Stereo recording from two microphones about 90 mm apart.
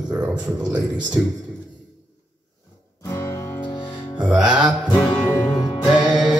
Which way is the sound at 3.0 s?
30° left (ahead or behind).